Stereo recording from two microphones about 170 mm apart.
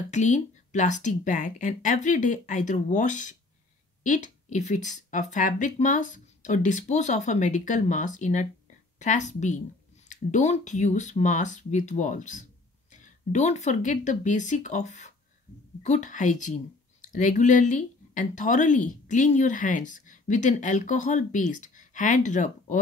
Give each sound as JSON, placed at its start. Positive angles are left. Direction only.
{"t": 0.1, "sound": "speech", "side_deg": 45}